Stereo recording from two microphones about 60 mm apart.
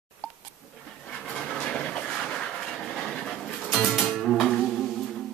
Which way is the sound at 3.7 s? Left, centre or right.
Centre.